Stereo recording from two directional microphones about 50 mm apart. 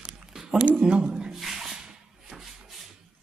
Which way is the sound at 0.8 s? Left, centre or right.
Centre.